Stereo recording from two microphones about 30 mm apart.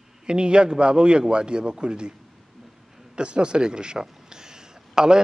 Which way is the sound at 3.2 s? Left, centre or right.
Right.